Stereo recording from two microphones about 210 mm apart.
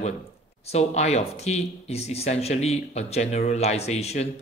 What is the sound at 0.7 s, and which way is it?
Speech, 30° left (ahead or behind).